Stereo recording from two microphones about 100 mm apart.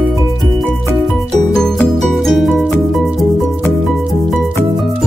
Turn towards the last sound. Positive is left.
turn(degrees=0)  # may be behind; listen again after turning